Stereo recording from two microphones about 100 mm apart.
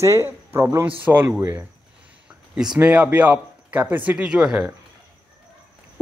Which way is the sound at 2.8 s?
15° right (ahead or behind).